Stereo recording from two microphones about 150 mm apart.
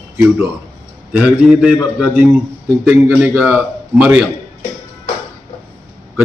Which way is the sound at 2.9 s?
10° right (ahead or behind).